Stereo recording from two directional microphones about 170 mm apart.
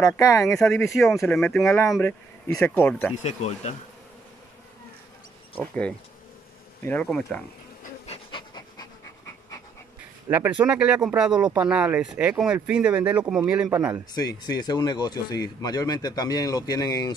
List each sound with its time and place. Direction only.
0.0 s speech: 15° left (ahead or behind)
0.5 s speech: 5° left (ahead or behind)
2.0 s speech: 15° left (ahead or behind)
3.2 s speech: 45° left (ahead or behind)
5.6 s speech: 5° left (ahead or behind)
8.1 s pant: 30° left (ahead or behind)
10.3 s speech: 10° right (ahead or behind)
14.1 s speech: 25° left (ahead or behind)